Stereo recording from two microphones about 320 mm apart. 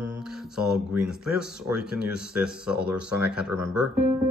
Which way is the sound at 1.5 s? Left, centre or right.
Centre.